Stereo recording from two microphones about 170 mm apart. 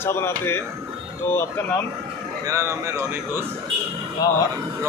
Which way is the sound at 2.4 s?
15° right (ahead or behind).